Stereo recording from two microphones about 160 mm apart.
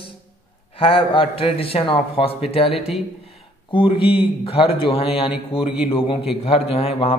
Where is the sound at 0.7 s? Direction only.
35° left (ahead or behind).